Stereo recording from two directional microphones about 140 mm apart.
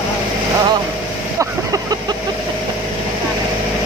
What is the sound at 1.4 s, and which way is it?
Vehicle, 25° right (ahead or behind).